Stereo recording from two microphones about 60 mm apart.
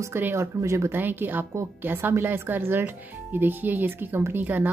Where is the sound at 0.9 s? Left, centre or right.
Right.